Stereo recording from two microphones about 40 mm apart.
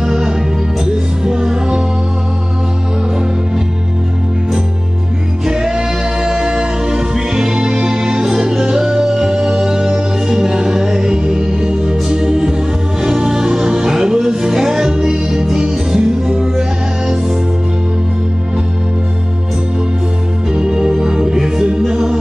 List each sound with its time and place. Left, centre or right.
0.0 s music: centre
5.5 s music: centre
20.5 s music: centre